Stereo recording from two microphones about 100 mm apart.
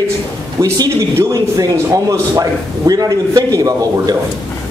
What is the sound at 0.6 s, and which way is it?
Speech, 35° right (ahead or behind).